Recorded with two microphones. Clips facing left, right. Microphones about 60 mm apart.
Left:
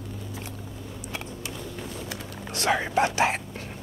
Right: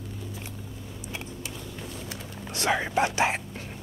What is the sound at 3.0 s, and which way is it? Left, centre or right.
Whispering, centre.